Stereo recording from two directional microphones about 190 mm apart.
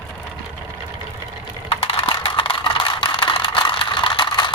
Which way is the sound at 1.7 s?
30° left (ahead or behind).